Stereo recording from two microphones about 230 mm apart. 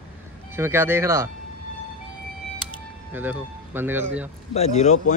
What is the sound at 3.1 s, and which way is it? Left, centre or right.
Speech, centre.